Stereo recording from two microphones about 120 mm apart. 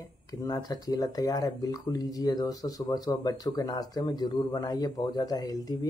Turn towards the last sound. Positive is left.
turn(degrees=30)  # may be behind; listen again after turning